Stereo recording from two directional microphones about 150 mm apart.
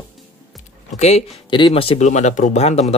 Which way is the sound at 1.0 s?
45° left (ahead or behind).